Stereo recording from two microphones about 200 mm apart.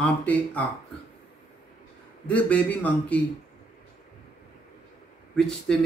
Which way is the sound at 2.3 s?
5° left (ahead or behind).